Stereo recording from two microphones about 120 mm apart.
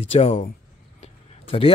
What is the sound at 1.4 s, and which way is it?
Speech, 50° left (ahead or behind).